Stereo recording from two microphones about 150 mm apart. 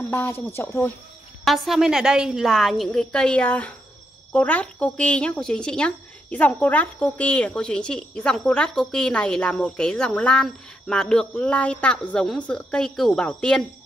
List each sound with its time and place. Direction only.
0.1 s speech: 15° left (ahead or behind)
1.4 s a woman's voice: centre (ahead or behind)